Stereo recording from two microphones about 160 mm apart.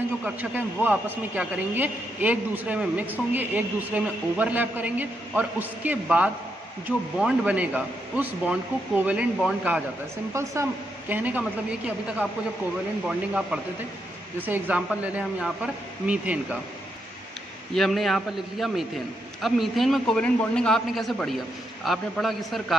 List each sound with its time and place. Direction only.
0.2 s a man's voice: 10° right (ahead or behind)
10.3 s a man's voice: 20° right (ahead or behind)
17.7 s a man's voice: centre (ahead or behind)